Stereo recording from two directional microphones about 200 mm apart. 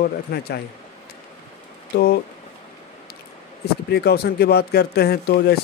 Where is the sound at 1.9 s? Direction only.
50° left (ahead or behind).